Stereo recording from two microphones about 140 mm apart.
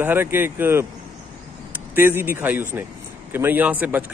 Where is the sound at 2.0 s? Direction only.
15° right (ahead or behind).